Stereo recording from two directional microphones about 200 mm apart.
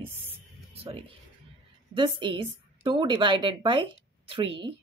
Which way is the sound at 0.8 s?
25° right (ahead or behind).